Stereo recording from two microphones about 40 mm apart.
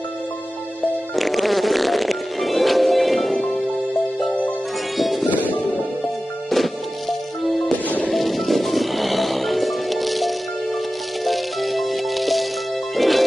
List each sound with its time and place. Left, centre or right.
1.1 s music: centre
4.9 s music: centre
5.3 s music: left
6.5 s music: centre